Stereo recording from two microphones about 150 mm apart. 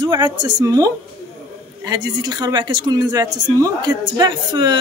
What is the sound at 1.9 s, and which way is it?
A woman's voice, 25° right (ahead or behind).